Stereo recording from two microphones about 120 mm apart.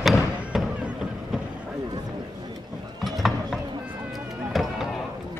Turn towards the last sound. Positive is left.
turn(degrees=0)  # may be behind; listen again after turning